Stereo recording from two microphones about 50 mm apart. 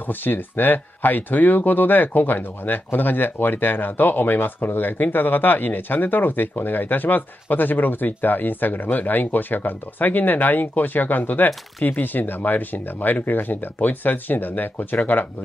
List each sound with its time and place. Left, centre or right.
0.0 s speech: left